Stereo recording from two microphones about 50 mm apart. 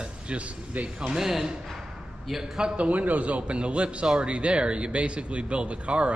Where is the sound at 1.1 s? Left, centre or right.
Centre.